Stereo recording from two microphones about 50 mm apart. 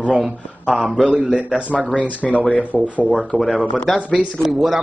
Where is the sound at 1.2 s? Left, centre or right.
Centre.